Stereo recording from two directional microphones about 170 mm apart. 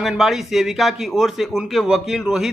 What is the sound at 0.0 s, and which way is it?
Speech, centre (ahead or behind).